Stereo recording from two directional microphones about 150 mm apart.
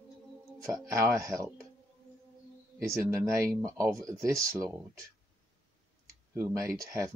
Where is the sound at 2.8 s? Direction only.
20° right (ahead or behind).